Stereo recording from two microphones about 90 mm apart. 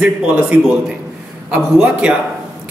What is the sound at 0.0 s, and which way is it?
Speech, 15° right (ahead or behind).